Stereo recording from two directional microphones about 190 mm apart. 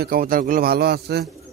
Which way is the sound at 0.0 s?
50° right (ahead or behind).